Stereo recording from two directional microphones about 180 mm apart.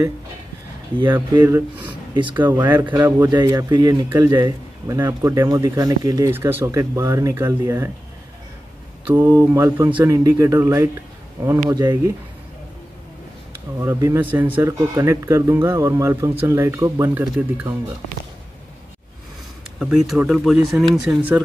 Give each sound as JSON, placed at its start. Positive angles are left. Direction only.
{"t": 1.3, "sound": "speech", "side_deg": -20}
{"t": 3.2, "sound": "speech", "side_deg": -20}
{"t": 9.1, "sound": "speech", "side_deg": -15}
{"t": 13.7, "sound": "speech", "side_deg": -15}
{"t": 19.8, "sound": "speech", "side_deg": -5}